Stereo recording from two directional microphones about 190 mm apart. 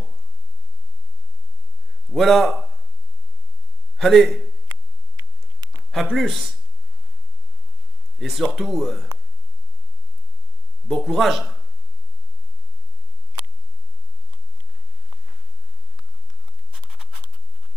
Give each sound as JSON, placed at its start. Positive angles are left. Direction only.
{"t": 2.1, "sound": "speech", "side_deg": 0}
{"t": 3.9, "sound": "speech", "side_deg": 0}
{"t": 4.6, "sound": "a sound", "side_deg": -20}
{"t": 5.9, "sound": "speech", "side_deg": 0}
{"t": 8.2, "sound": "speech", "side_deg": 0}
{"t": 10.9, "sound": "speech", "side_deg": 0}
{"t": 16.7, "sound": "a sound", "side_deg": -5}